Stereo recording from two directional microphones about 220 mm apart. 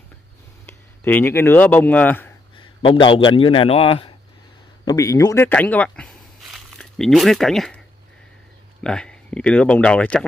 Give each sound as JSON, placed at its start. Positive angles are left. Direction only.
{"t": 0.7, "sound": "speech", "side_deg": 10}
{"t": 2.6, "sound": "a man's voice", "side_deg": 25}
{"t": 4.8, "sound": "speech", "side_deg": 15}
{"t": 8.8, "sound": "speech", "side_deg": 5}